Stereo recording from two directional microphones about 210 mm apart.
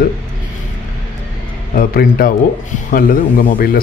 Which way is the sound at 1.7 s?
45° left (ahead or behind).